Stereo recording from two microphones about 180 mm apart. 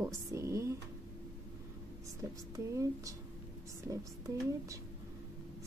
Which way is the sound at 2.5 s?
20° right (ahead or behind).